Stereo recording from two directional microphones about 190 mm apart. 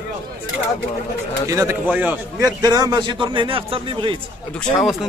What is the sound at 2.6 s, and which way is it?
Speech, 20° right (ahead or behind).